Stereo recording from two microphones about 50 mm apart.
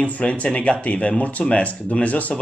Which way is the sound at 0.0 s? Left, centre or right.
Left.